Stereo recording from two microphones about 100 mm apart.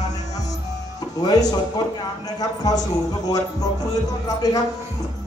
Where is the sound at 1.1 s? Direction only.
40° left (ahead or behind).